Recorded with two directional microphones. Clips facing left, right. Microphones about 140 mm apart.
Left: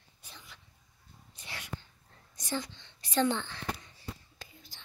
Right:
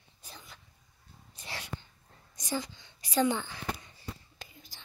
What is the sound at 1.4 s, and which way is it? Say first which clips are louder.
Whispering: right 3 dB; 35° right (ahead or behind).